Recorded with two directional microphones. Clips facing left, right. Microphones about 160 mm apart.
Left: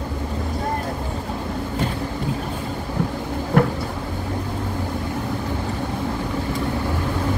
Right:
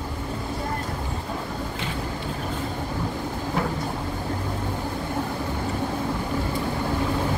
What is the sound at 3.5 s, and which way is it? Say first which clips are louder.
Vehicle: left 9 dB; 55° left (ahead or behind).